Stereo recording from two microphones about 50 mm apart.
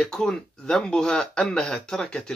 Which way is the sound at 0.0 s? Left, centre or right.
Centre.